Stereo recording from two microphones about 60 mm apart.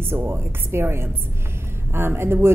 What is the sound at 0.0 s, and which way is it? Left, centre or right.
A woman's voice, right.